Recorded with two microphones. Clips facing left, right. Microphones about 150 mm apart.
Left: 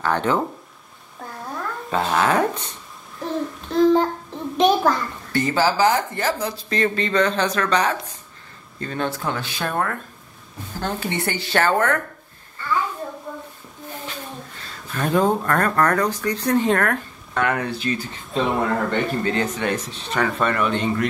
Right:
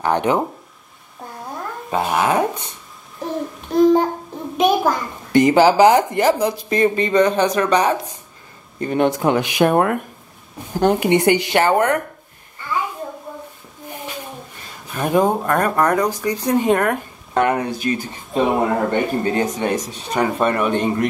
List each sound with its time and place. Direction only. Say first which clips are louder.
0.0 s a child's voice: right 3 dB; 15° right (ahead or behind)
1.4 s a sound: even; 20° right (ahead or behind)
3.3 s child singing: right 1 dB; 15° right (ahead or behind)
4.6 s a child's voice: right 1 dB; 10° right (ahead or behind)
12.5 s a sound: even; 15° right (ahead or behind)
15.4 s a child's voice: right 2 dB; 15° right (ahead or behind)